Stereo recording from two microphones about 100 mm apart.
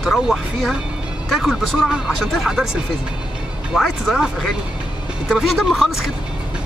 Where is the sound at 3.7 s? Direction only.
5° right (ahead or behind).